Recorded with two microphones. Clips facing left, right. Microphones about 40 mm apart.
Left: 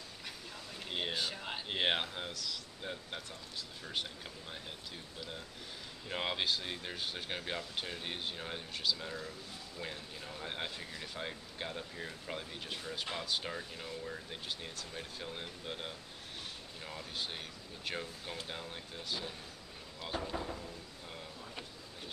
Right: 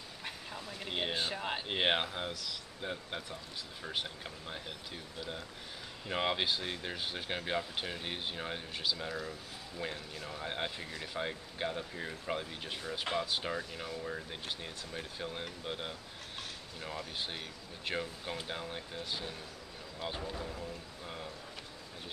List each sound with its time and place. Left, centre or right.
0.2 s dog: centre
1.1 s speech: right
10.2 s speech: centre
20.2 s speech: centre